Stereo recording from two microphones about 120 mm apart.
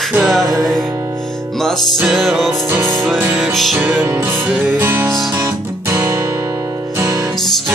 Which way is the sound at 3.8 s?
15° right (ahead or behind).